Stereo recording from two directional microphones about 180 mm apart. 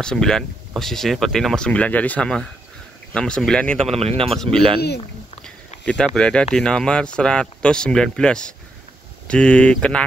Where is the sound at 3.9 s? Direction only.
35° right (ahead or behind).